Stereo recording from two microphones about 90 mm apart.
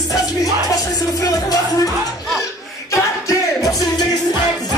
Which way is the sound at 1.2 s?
40° left (ahead or behind).